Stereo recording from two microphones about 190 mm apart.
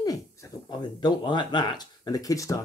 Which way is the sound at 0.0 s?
20° left (ahead or behind).